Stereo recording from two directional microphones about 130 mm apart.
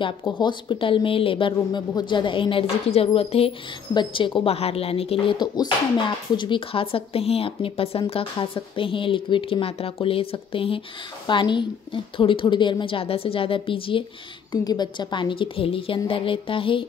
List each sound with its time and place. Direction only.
0.4 s a woman's voice: 35° left (ahead or behind)
14.5 s a woman's voice: 30° left (ahead or behind)